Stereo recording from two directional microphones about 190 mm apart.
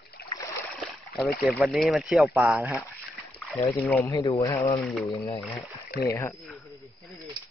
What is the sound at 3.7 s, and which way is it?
Speech, 10° left (ahead or behind).